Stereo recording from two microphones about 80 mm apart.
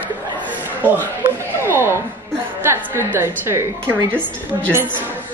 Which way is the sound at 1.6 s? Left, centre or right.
Right.